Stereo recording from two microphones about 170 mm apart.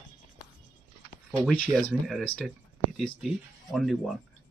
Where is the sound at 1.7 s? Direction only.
5° left (ahead or behind).